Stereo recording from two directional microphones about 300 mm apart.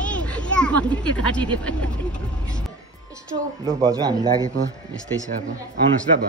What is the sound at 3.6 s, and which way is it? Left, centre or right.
Speech, centre.